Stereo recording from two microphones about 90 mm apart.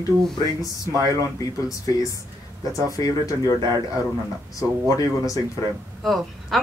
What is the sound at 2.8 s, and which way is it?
Speech, 40° left (ahead or behind).